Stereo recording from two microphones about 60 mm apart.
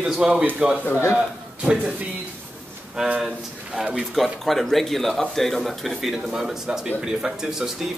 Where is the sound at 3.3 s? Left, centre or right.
Centre.